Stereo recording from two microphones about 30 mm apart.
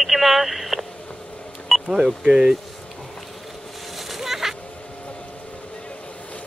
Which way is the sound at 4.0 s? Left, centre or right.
Centre.